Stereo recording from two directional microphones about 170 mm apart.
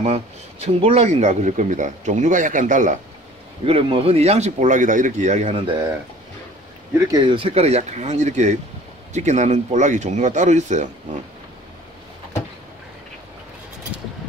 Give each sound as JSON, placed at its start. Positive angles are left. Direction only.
{"t": 0.0, "sound": "speech", "side_deg": -40}
{"t": 3.6, "sound": "speech", "side_deg": -35}
{"t": 7.1, "sound": "speech", "side_deg": -25}